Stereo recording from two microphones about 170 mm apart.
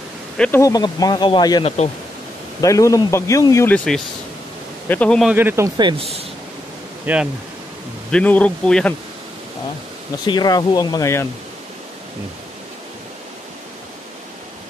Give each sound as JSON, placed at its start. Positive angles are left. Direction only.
{"t": 0.4, "sound": "speech", "side_deg": 15}
{"t": 2.6, "sound": "a man's voice", "side_deg": 20}
{"t": 5.3, "sound": "speech", "side_deg": -10}
{"t": 5.8, "sound": "speech", "side_deg": -25}
{"t": 7.1, "sound": "speech", "side_deg": -10}
{"t": 8.1, "sound": "a man's voice", "side_deg": 5}
{"t": 10.2, "sound": "speech", "side_deg": 25}